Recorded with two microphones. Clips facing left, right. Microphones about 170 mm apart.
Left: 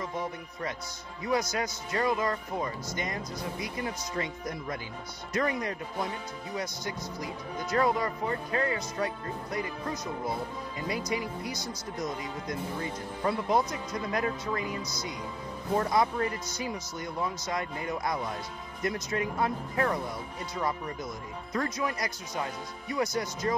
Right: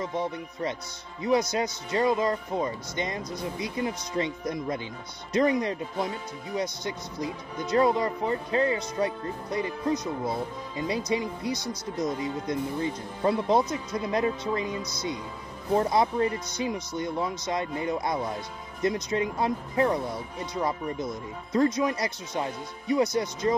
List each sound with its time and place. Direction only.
0.0 s speech: 25° right (ahead or behind)